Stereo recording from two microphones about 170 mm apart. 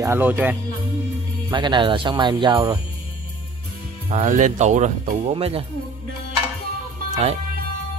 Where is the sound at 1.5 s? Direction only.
25° right (ahead or behind).